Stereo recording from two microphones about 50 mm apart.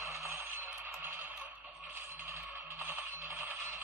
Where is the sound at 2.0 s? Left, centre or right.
Right.